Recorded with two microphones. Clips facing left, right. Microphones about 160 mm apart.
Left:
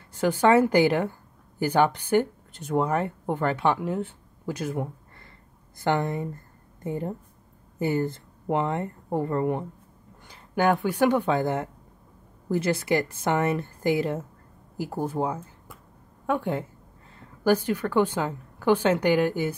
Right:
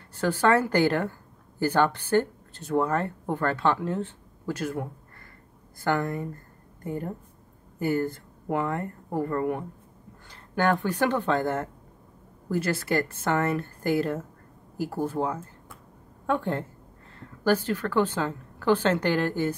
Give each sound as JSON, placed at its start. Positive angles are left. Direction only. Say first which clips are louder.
{"t": 0.1, "sound": "a woman's voice", "louder": "left 3 dB", "side_deg": 15}